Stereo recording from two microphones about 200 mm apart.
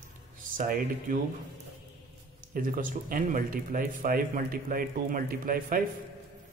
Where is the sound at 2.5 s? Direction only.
45° right (ahead or behind).